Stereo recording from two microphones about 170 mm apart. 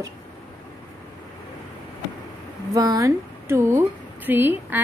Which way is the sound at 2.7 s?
20° right (ahead or behind).